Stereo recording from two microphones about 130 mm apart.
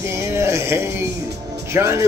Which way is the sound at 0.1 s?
20° right (ahead or behind).